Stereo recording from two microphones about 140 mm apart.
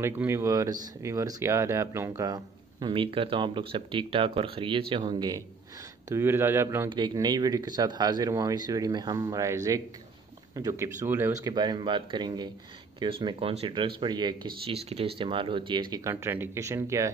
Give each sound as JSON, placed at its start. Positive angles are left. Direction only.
{"t": 0.0, "sound": "speech", "side_deg": -20}
{"t": 6.0, "sound": "a man's voice", "side_deg": -20}
{"t": 6.9, "sound": "a man's voice", "side_deg": -30}
{"t": 11.4, "sound": "speech", "side_deg": -30}
{"t": 16.0, "sound": "speech", "side_deg": -20}